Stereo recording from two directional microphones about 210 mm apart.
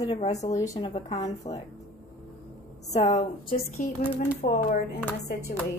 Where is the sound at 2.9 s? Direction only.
30° left (ahead or behind).